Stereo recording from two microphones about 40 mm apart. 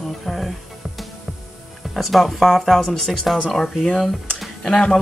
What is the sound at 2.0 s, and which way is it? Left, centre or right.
Speech, centre.